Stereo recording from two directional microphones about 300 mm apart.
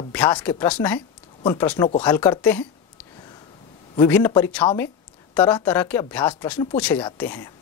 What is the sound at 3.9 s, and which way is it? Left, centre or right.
A man's voice, centre.